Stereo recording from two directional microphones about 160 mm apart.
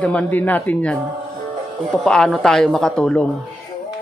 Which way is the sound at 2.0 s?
5° left (ahead or behind).